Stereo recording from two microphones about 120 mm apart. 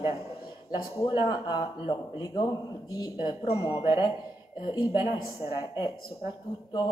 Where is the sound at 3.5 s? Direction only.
45° left (ahead or behind).